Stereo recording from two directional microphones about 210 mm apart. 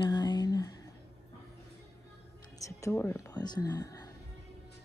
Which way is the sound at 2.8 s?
10° left (ahead or behind).